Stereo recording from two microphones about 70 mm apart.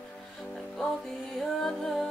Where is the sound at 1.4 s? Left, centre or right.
Centre.